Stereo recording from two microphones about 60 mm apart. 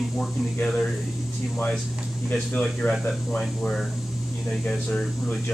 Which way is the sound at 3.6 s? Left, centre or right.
Centre.